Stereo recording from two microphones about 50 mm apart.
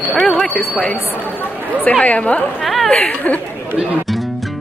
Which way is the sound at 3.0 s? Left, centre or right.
Left.